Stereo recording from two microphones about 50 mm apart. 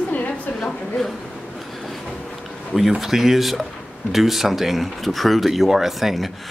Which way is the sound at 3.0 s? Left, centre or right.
Centre.